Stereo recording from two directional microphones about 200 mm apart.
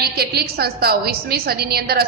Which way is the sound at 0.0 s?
50° right (ahead or behind).